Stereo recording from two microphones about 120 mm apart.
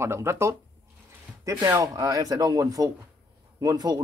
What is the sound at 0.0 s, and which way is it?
Speech, 20° right (ahead or behind).